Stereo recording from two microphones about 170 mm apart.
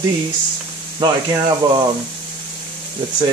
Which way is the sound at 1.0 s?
25° right (ahead or behind).